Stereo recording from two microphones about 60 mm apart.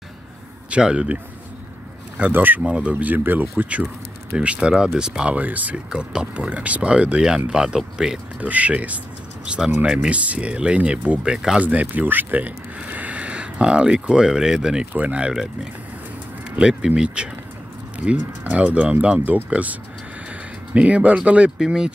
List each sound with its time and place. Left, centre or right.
0.7 s speech: centre
5.9 s speech: centre
8.4 s speech: right
10.0 s speech: right
11.6 s speech: right
16.5 s speech: centre